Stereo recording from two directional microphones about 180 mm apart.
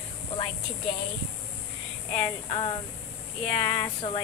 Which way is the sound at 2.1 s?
25° left (ahead or behind).